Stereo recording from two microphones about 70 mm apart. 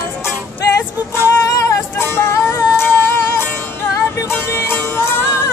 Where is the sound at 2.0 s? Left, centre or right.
Left.